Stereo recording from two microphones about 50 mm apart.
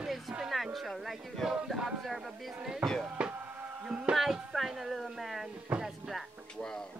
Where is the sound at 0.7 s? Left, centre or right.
Centre.